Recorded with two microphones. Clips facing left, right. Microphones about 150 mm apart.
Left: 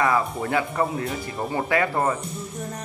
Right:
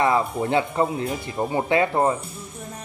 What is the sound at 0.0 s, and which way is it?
Speech, 25° right (ahead or behind).